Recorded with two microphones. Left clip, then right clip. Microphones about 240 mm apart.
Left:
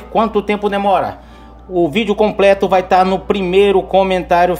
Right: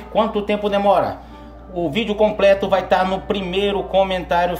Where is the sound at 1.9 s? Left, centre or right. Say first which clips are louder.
Even; left.